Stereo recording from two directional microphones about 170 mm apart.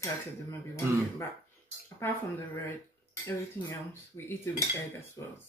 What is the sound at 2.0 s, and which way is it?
Cutlery, 15° left (ahead or behind).